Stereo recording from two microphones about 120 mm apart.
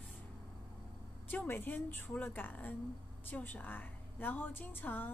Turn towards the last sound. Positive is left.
turn(degrees=15)  # may be behind; listen again after turning